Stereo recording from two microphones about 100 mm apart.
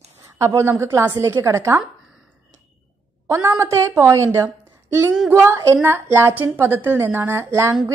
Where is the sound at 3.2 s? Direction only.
25° right (ahead or behind).